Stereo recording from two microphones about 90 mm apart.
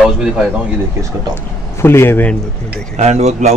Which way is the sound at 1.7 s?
30° left (ahead or behind).